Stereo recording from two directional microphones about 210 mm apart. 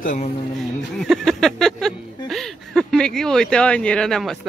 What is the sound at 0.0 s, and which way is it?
Speech, 35° left (ahead or behind).